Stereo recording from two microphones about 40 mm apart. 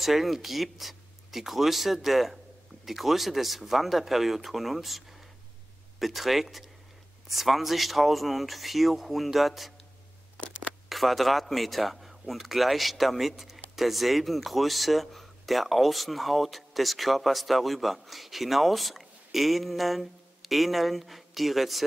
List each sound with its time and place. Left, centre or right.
0.0 s speech: centre
10.9 s speech: centre